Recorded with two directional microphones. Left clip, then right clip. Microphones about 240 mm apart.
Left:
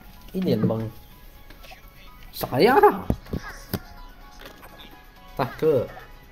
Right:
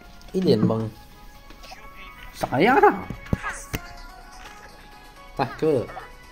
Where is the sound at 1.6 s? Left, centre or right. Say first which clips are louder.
Right 6 dB; centre.